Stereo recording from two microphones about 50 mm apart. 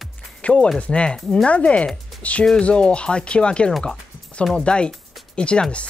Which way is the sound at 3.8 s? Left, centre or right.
Centre.